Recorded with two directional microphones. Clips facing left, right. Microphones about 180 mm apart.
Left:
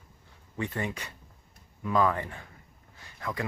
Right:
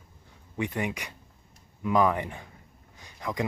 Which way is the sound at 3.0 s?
15° right (ahead or behind).